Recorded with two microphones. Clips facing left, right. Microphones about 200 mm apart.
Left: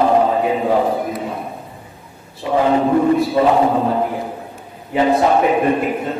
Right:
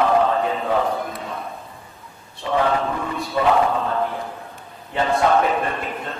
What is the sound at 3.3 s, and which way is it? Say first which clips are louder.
Chant: left 4 dB; 25° left (ahead or behind).